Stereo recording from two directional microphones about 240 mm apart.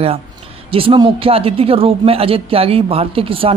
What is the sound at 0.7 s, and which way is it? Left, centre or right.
Speech, right.